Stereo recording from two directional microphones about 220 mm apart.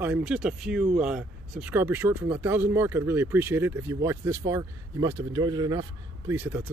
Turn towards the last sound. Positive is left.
turn(degrees=-10)  # may be behind; listen again after turning